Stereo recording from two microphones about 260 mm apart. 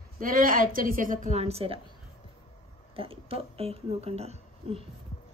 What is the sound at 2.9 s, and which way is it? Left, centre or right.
Speech, right.